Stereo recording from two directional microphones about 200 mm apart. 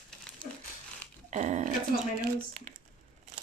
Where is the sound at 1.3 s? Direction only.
35° right (ahead or behind).